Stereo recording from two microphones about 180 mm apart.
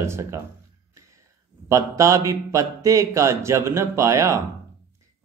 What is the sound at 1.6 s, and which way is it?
A man's voice, 15° right (ahead or behind).